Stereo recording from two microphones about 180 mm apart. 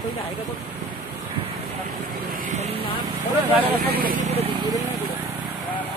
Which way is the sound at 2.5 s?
35° right (ahead or behind).